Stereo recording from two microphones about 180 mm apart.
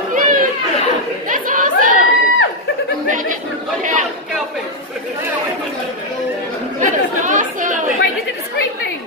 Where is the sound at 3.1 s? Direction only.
45° right (ahead or behind).